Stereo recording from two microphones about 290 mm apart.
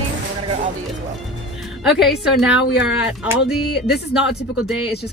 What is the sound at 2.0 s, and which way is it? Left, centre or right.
Speech, centre.